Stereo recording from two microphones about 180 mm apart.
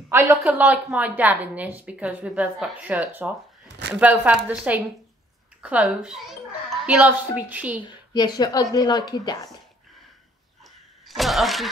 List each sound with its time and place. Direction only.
0.1 s a woman's voice: 15° right (ahead or behind)
7.8 s a woman's voice: 25° left (ahead or behind)
11.1 s a woman's voice: centre (ahead or behind)